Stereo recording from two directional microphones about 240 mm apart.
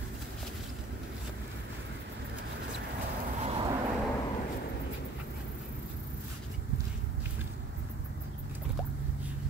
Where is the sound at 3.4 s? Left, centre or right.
Right.